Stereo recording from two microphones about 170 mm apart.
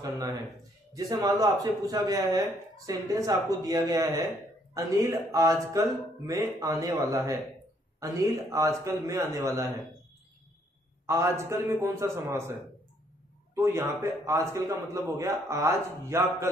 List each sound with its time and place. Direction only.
0.0 s a sound: 20° right (ahead or behind)
0.9 s a man's voice: 20° right (ahead or behind)
11.1 s a man's voice: 15° right (ahead or behind)
13.6 s a man's voice: 15° right (ahead or behind)